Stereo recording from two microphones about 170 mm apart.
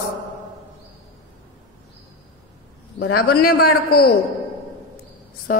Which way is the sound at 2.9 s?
75° left (ahead or behind).